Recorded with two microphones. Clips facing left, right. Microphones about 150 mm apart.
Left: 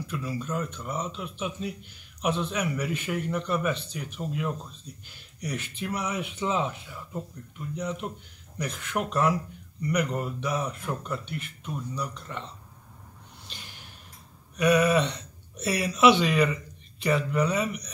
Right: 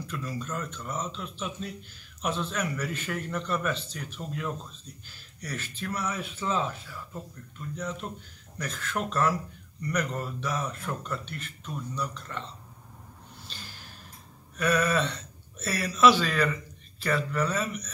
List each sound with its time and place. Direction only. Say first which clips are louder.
0.0 s speech: left 2 dB; 10° left (ahead or behind)
14.6 s speech: left 4 dB; 15° left (ahead or behind)